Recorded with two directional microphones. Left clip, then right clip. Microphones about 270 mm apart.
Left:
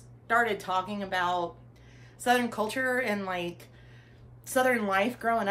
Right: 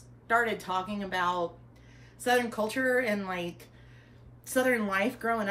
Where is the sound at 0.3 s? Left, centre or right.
Centre.